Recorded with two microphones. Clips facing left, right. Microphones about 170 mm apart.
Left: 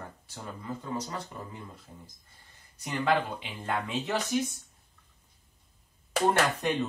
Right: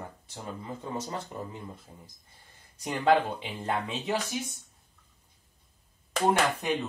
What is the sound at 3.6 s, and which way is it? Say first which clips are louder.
Speech: even; 20° right (ahead or behind).